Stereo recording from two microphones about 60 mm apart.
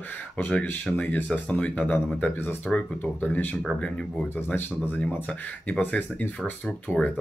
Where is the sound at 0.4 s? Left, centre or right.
Left.